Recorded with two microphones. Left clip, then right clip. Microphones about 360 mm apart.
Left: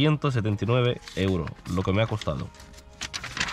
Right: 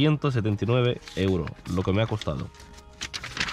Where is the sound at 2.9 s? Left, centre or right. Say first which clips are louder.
Even; centre.